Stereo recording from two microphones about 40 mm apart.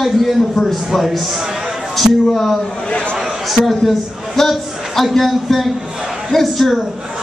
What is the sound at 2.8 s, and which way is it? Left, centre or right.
Speech, left.